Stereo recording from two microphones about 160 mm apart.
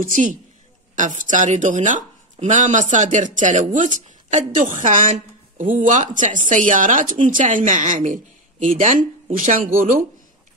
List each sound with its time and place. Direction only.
0.0 s a woman's voice: 55° right (ahead or behind)